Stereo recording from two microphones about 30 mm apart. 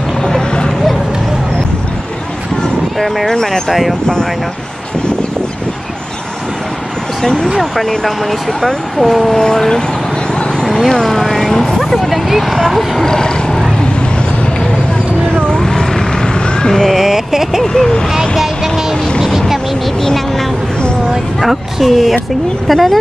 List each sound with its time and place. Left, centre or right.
0.2 s vehicle: left
3.3 s speech: centre
8.0 s speech: centre
10.6 s horse: centre
11.1 s speech: centre
11.8 s speech: centre
13.0 s speech: centre
15.6 s vehicle: centre
16.3 s vehicle: left
16.9 s speech: centre
18.4 s music: centre
21.4 s speech: centre
22.7 s speech: centre